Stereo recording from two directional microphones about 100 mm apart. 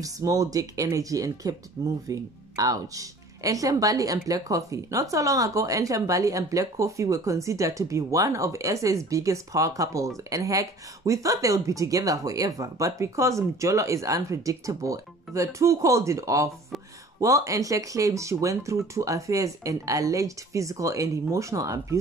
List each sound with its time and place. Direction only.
0.0 s speech: 35° right (ahead or behind)